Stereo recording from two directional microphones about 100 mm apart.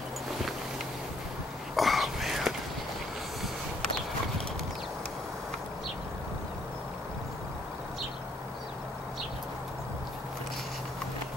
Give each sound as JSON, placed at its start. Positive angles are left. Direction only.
{"t": 1.8, "sound": "whispering", "side_deg": 0}